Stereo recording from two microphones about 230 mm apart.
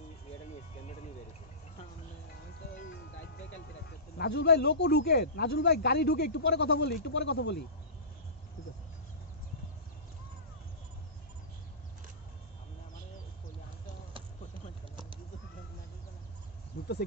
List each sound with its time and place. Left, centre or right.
2.9 s music: left
4.2 s speech: left
16.8 s a sound: left